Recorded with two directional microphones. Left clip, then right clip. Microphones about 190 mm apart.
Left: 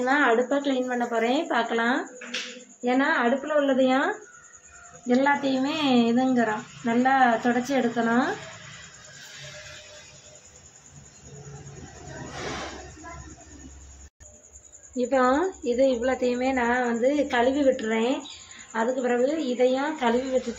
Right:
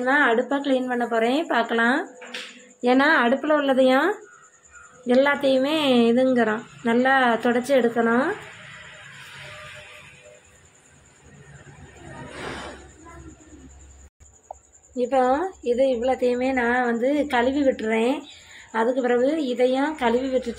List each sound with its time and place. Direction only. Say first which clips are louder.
0.0 s a woman's voice: right 2 dB; 15° right (ahead or behind)
2.8 s a woman's voice: right 5 dB; 55° right (ahead or behind); by 8.2 s 35° right (ahead or behind)
15.0 s a woman's voice: right 2 dB; 5° right (ahead or behind); by 20.2 s 35° right (ahead or behind)